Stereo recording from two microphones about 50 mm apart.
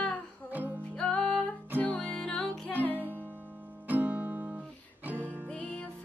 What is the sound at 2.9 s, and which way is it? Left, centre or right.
Music, right.